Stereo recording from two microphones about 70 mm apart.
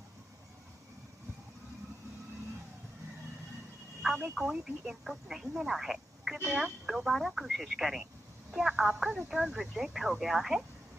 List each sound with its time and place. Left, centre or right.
4.2 s speech: centre